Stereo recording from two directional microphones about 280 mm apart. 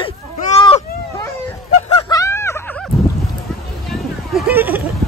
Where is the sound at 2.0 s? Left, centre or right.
Centre.